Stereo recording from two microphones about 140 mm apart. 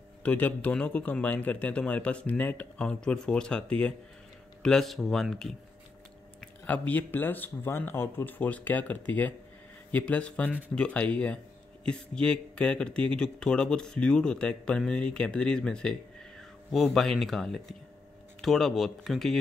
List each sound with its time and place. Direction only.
0.2 s a man's voice: 10° left (ahead or behind)